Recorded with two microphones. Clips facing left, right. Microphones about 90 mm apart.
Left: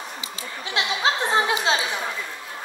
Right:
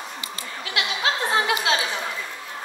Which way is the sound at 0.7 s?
30° left (ahead or behind).